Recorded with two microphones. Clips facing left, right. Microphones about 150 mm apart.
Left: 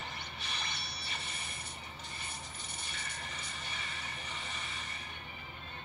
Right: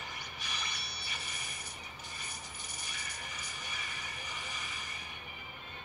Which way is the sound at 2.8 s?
25° left (ahead or behind).